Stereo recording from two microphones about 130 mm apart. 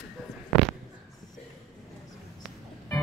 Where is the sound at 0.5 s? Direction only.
Centre (ahead or behind).